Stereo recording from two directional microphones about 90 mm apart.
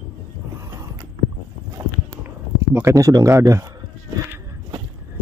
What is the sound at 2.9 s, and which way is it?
Speech, 35° right (ahead or behind).